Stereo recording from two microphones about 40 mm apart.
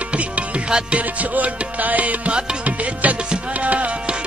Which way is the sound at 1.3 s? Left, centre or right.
Right.